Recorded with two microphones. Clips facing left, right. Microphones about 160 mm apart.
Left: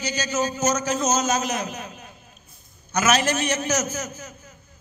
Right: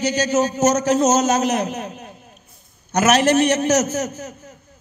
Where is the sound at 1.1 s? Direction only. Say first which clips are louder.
Right 6 dB; 70° right (ahead or behind).